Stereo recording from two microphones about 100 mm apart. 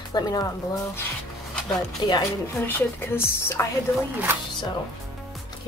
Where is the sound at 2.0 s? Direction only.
45° left (ahead or behind).